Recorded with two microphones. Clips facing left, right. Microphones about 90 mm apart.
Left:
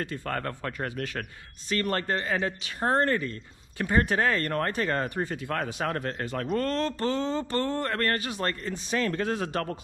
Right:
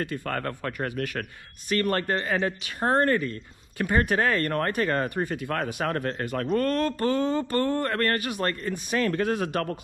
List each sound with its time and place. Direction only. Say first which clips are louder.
0.0 s speech: right 2 dB; 55° right (ahead or behind)